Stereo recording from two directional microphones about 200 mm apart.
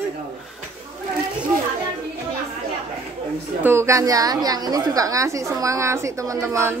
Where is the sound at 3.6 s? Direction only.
15° right (ahead or behind).